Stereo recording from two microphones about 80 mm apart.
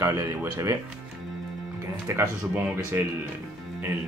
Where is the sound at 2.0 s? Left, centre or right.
Right.